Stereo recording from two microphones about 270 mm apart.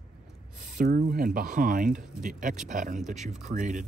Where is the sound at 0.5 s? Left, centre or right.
Right.